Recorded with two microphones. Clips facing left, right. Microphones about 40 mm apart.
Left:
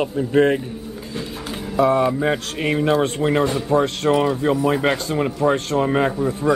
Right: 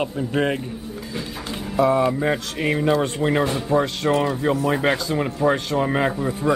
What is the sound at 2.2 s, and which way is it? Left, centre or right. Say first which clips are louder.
Speech: left 1 dB; centre.